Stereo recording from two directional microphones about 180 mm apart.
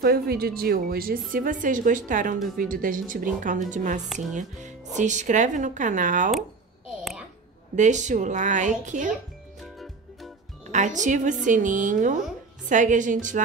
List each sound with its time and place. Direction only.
0.0 s speech: 60° right (ahead or behind); by 6.3 s 45° right (ahead or behind)
7.7 s speech: 40° right (ahead or behind)
9.6 s music: centre (ahead or behind)
10.7 s speech: 40° right (ahead or behind)